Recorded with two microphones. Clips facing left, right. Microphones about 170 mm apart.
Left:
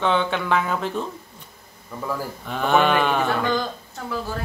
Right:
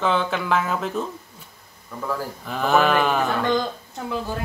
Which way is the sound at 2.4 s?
Centre (ahead or behind).